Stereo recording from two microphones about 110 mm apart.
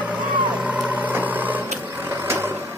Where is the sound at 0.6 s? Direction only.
15° right (ahead or behind).